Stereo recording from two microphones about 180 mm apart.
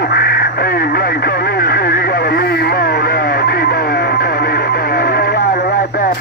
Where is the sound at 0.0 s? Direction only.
60° left (ahead or behind).